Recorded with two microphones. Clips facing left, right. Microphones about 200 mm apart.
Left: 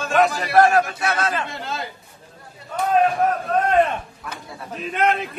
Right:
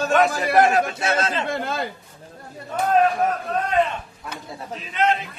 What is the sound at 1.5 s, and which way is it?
Speech, 55° right (ahead or behind).